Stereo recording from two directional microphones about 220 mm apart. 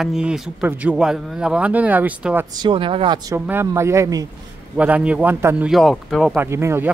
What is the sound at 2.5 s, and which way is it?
Speech, 20° right (ahead or behind).